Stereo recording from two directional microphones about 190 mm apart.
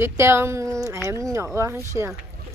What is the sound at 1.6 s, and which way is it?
Speech, 15° right (ahead or behind).